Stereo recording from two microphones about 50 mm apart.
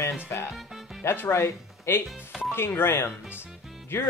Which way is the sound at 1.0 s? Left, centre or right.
Left.